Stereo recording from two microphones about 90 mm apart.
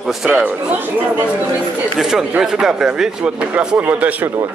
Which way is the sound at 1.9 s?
5° right (ahead or behind).